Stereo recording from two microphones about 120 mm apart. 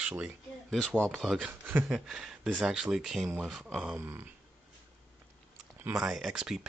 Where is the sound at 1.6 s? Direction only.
15° right (ahead or behind).